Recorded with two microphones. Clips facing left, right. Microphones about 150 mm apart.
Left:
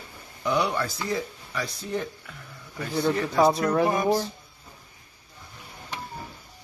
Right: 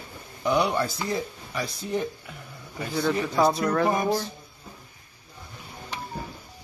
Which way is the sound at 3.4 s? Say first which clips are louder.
Left 2 dB; 10° left (ahead or behind).